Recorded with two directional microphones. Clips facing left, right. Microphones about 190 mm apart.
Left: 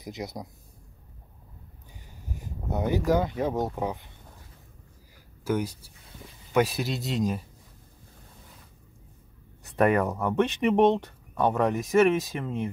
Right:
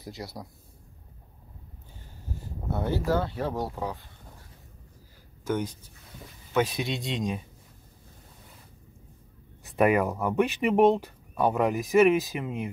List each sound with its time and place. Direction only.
0.0 s speech: 20° left (ahead or behind)
2.3 s a sound: 15° left (ahead or behind)
3.1 s speech: 15° left (ahead or behind)
5.4 s speech: 10° left (ahead or behind)
9.8 s speech: 5° right (ahead or behind)